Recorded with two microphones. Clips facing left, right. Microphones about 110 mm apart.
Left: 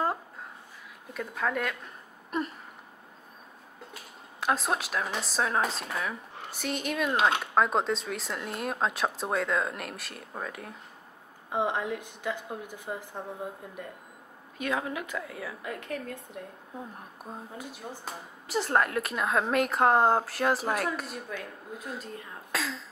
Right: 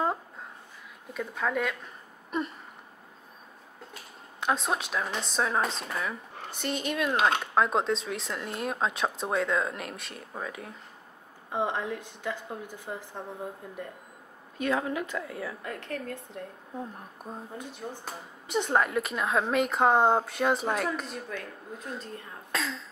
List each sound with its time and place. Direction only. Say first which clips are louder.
1.1 s speech: right 1 dB; centre (ahead or behind)
3.9 s speech: even; centre (ahead or behind)
11.5 s a woman's voice: left 1 dB; 15° left (ahead or behind)
14.6 s a woman's voice: right 3 dB; 10° left (ahead or behind)
17.2 s speech: right 1 dB; centre (ahead or behind)